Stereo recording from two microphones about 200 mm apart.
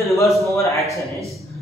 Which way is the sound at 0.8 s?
Centre (ahead or behind).